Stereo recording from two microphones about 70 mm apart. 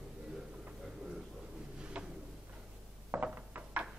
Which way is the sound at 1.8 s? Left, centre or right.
Centre.